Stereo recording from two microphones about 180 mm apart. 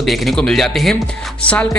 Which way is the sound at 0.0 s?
Centre (ahead or behind).